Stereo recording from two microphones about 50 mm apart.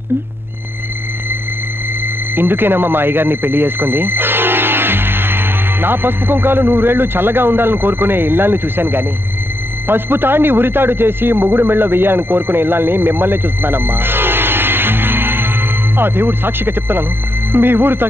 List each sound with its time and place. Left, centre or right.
2.3 s a man's voice: right